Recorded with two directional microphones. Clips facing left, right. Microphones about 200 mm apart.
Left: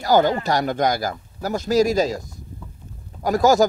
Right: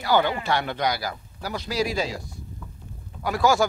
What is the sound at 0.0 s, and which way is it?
Speech, 40° left (ahead or behind).